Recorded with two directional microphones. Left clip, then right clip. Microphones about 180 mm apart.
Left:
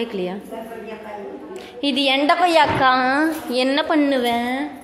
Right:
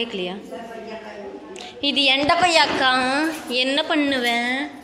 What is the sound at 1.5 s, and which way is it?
A woman's voice, 20° left (ahead or behind).